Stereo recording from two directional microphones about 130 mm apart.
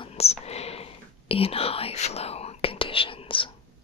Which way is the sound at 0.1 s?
55° left (ahead or behind).